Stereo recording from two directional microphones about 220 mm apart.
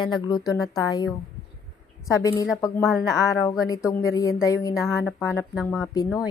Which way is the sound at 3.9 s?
15° left (ahead or behind).